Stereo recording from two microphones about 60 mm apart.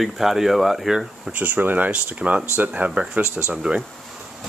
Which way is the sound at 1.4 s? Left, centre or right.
Right.